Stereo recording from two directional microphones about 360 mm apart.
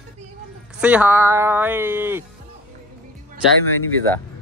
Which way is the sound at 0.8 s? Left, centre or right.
Centre.